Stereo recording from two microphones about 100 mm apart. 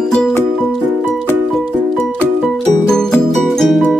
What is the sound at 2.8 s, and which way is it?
Music, 5° left (ahead or behind).